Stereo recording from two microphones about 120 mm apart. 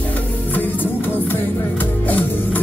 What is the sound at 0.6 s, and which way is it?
Music, 15° left (ahead or behind).